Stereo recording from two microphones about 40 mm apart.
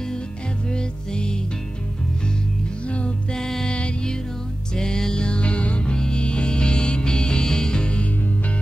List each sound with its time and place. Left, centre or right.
0.7 s music: left
3.3 s music: centre